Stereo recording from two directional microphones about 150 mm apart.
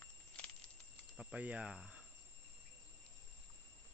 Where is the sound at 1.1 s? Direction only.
10° right (ahead or behind).